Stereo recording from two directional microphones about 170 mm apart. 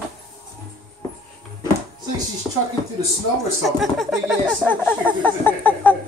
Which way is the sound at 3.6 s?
Centre (ahead or behind).